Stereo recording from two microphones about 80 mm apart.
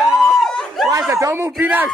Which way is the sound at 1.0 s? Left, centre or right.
Right.